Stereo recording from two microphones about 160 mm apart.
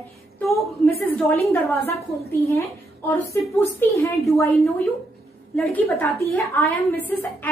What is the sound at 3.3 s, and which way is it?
A woman's voice, 10° left (ahead or behind).